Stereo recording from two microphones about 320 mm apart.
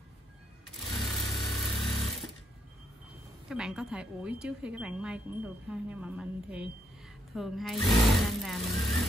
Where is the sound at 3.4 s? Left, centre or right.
Centre.